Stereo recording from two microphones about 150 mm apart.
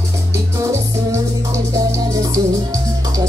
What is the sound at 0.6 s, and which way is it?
Music, 20° right (ahead or behind).